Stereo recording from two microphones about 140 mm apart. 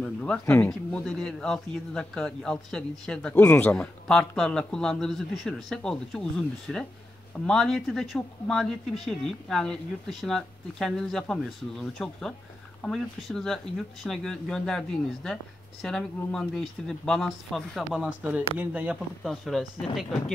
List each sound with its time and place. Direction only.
0.0 s a sound: 5° left (ahead or behind)
0.5 s speech: 20° left (ahead or behind)
0.9 s a man's voice: 5° left (ahead or behind)
19.2 s a man's voice: centre (ahead or behind)